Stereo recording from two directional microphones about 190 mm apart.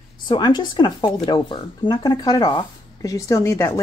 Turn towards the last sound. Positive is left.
turn(degrees=15)  # may be behind; listen again after turning